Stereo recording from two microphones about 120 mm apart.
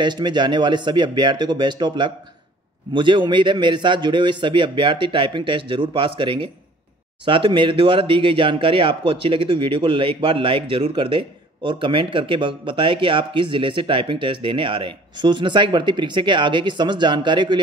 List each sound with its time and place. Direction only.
0.0 s speech: 40° right (ahead or behind)